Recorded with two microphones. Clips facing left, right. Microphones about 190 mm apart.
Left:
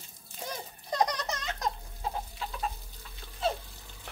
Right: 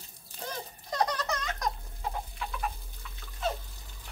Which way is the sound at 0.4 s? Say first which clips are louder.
Right 1 dB; 10° left (ahead or behind).